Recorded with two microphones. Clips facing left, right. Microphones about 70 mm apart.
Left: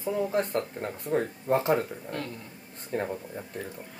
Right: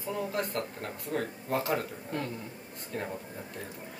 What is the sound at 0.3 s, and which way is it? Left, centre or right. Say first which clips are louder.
Speech: left 5 dB; left.